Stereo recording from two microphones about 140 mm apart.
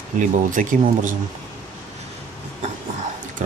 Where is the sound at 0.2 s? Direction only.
70° right (ahead or behind).